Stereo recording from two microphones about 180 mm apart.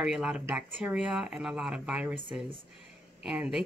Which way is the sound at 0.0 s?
5° right (ahead or behind).